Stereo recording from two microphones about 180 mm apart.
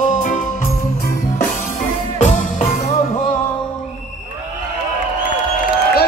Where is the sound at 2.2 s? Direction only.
40° left (ahead or behind).